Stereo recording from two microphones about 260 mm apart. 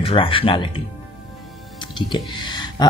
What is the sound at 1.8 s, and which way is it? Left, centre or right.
Music, centre.